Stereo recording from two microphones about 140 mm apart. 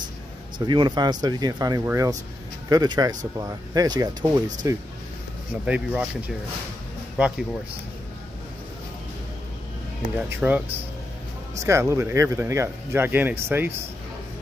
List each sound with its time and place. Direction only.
0.7 s speech: 30° right (ahead or behind)
5.7 s speech: 10° right (ahead or behind)
10.1 s speech: 10° right (ahead or behind)